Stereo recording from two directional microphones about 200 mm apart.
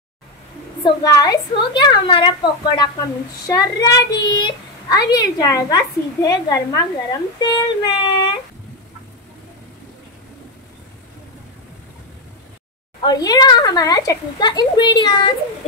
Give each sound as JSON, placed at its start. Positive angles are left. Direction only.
{"t": 0.8, "sound": "a child's voice", "side_deg": 20}
{"t": 13.0, "sound": "a child's voice", "side_deg": 20}